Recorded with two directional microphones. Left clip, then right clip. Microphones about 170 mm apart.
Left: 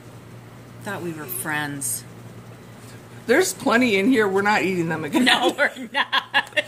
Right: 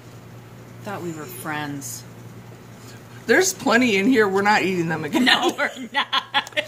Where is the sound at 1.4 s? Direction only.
25° left (ahead or behind).